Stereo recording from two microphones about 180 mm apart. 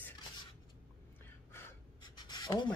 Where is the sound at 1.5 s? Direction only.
25° left (ahead or behind).